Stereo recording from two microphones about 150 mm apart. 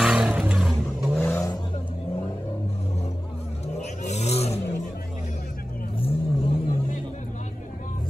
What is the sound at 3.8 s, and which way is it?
Vehicle, 50° left (ahead or behind).